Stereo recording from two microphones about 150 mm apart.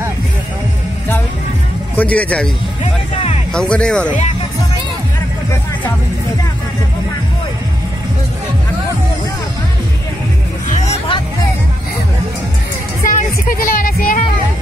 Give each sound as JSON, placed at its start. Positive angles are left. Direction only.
{"t": 2.0, "sound": "speech", "side_deg": 10}
{"t": 3.5, "sound": "speech", "side_deg": 5}
{"t": 13.0, "sound": "music", "side_deg": 60}